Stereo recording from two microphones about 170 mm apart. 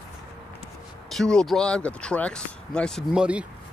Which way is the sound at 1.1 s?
5° left (ahead or behind).